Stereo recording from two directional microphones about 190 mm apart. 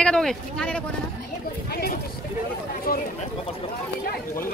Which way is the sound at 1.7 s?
55° left (ahead or behind).